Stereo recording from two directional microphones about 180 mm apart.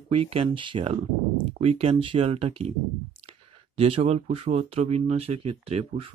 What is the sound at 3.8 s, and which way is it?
Speech, 30° right (ahead or behind).